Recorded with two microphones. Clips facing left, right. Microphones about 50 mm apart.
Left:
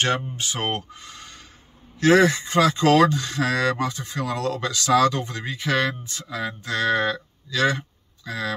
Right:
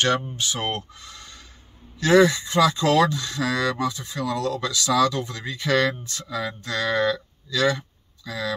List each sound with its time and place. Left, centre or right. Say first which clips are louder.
0.0 s speech: right 1 dB; left
5.6 s speech: right 2 dB; centre; by 8.5 s left